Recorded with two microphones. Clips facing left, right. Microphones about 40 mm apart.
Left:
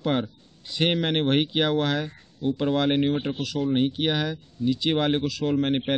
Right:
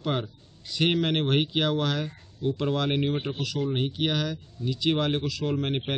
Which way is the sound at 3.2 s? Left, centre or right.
Centre.